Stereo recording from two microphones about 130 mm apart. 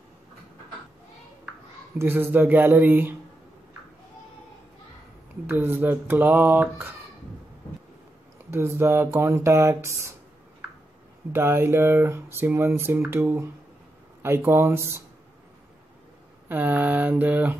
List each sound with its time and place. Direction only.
2.0 s speech: 15° right (ahead or behind)
5.5 s speech: 15° right (ahead or behind)
8.5 s speech: 20° right (ahead or behind)
11.3 s speech: 20° right (ahead or behind)
16.4 s speech: 15° right (ahead or behind)